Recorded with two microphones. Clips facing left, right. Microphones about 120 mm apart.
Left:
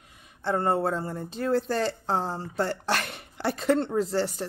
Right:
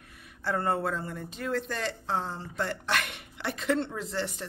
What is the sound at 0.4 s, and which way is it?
Speech, 25° left (ahead or behind).